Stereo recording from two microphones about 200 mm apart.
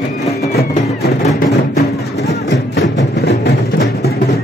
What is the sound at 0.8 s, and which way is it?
Music, 35° left (ahead or behind).